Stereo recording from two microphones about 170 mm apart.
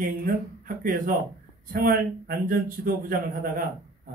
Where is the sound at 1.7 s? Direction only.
60° right (ahead or behind).